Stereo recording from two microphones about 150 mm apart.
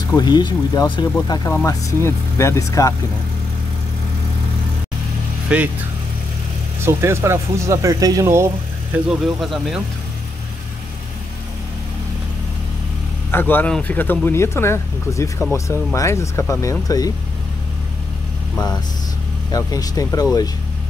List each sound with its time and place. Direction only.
0.1 s speech: 30° left (ahead or behind)
5.5 s speech: 10° right (ahead or behind)
6.8 s speech: 15° right (ahead or behind)
9.4 s speech: centre (ahead or behind)
13.3 s speech: 15° left (ahead or behind)
19.5 s speech: 25° left (ahead or behind)